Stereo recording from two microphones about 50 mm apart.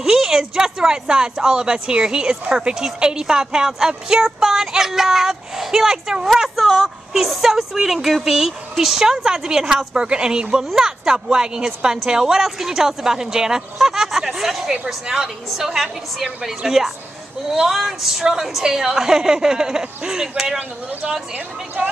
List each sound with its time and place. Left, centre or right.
0.0 s a woman's voice: centre
21.8 s speech: right